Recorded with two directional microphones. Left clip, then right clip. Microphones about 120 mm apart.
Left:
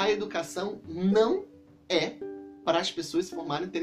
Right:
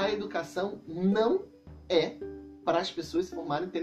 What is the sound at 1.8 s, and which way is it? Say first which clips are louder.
Speech: right 1 dB; 50° left (ahead or behind).